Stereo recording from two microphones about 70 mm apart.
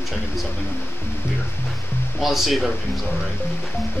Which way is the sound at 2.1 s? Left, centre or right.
Centre.